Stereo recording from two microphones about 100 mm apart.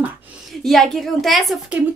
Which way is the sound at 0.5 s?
5° left (ahead or behind).